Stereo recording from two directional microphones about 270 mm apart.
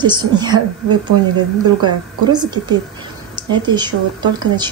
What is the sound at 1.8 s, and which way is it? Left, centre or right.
Speech, centre.